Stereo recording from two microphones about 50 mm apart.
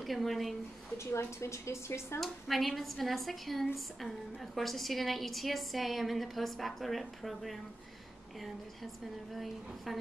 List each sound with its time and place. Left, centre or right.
0.0 s a woman's voice: centre
0.9 s speech: left
2.1 s a woman's voice: centre